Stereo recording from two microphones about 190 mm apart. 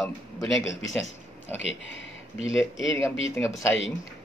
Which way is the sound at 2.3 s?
30° right (ahead or behind).